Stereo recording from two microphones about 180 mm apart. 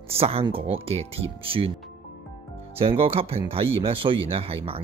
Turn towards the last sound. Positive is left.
turn(degrees=-30)  # may be behind; listen again after turning